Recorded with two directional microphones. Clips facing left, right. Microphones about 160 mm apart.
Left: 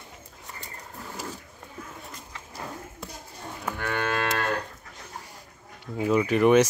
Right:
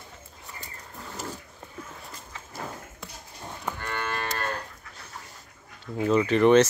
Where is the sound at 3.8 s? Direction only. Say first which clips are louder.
Left 7 dB; 80° left.